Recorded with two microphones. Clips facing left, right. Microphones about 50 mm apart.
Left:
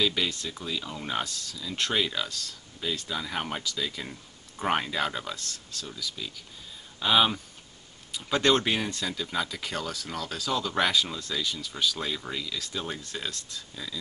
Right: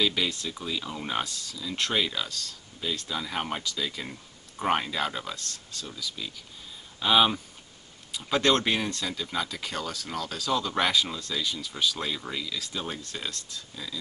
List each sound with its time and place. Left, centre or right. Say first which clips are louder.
0.0 s speech: even; centre